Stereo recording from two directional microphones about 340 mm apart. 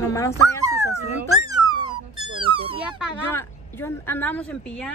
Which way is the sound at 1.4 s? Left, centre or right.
Centre.